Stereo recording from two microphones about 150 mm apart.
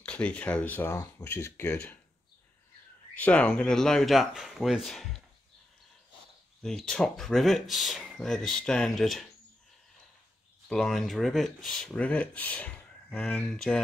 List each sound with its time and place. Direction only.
0.0 s speech: 5° left (ahead or behind)
3.2 s speech: 10° left (ahead or behind)
6.6 s speech: 5° left (ahead or behind)
10.7 s speech: 5° left (ahead or behind)